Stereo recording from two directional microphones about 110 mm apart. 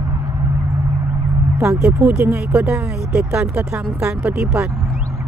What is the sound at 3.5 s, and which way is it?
Speech, 20° right (ahead or behind).